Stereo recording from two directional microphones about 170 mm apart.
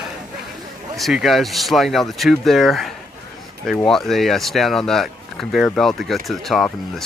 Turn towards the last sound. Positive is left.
turn(degrees=0)  # may be behind; listen again after turning